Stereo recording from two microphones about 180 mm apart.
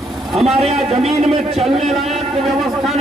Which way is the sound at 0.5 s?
35° right (ahead or behind).